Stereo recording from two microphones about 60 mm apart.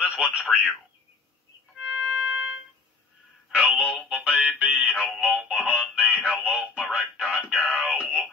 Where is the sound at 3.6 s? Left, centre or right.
Centre.